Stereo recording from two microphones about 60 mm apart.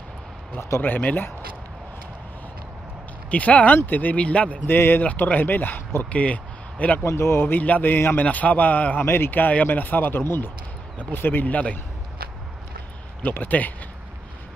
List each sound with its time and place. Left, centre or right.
0.6 s speech: left
0.8 s speech: left
3.3 s a man's voice: left
4.6 s a man's voice: left
6.0 s speech: left
7.0 s speech: left
7.5 s a man's voice: left
9.0 s speech: left
13.2 s a man's voice: left